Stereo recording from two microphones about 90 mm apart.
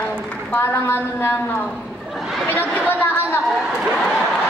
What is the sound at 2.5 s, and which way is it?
Chatter, 20° left (ahead or behind).